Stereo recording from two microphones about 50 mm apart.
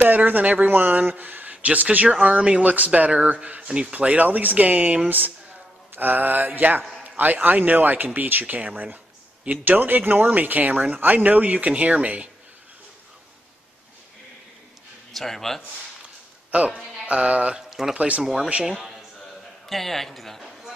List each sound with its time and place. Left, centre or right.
0.0 s speech: right
3.6 s speech: centre
3.9 s speech: right
15.1 s a man's voice: centre
16.5 s speech: right
17.0 s a sound: right
17.6 s speech: centre
17.9 s a sound: right
18.2 s speech: centre
18.8 s a sound: centre
19.7 s a man's voice: centre